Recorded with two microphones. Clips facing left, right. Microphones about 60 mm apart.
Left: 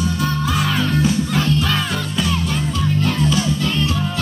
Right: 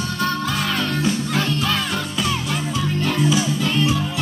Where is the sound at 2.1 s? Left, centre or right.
Centre.